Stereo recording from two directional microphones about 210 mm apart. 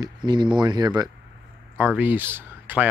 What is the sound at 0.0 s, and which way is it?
Speech, 20° right (ahead or behind).